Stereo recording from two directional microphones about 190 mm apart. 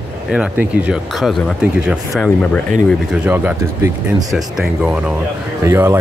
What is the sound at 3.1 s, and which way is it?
Speech, 10° right (ahead or behind).